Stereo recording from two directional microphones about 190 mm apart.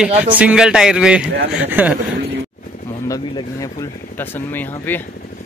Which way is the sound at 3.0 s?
15° left (ahead or behind).